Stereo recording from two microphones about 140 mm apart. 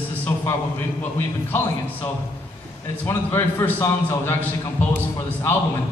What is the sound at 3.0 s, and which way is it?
A man's voice, 15° left (ahead or behind).